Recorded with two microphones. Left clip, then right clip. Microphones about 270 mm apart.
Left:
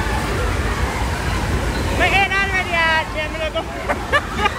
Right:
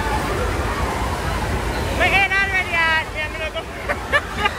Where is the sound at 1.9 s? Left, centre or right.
Centre.